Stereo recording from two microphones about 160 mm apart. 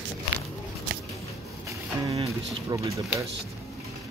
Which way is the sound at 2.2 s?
20° right (ahead or behind).